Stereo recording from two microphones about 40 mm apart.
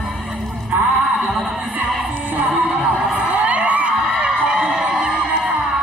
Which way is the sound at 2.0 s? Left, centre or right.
Right.